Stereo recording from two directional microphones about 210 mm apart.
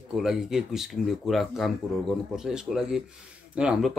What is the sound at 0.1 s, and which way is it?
Speech, centre (ahead or behind).